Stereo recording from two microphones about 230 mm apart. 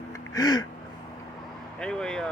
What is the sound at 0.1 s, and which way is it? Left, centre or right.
Gasp, centre.